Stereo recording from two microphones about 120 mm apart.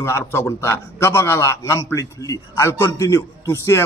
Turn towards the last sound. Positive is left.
turn(degrees=25)  # may be behind; listen again after turning